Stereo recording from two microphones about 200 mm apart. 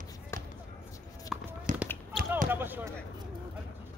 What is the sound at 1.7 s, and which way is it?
Basketball bounce, 40° right (ahead or behind).